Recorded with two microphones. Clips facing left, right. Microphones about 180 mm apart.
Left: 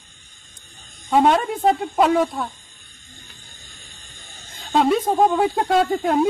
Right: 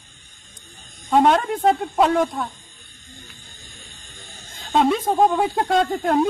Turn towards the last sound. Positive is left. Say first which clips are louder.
# left 1 dB
turn(degrees=0)  # may be behind; listen again after turning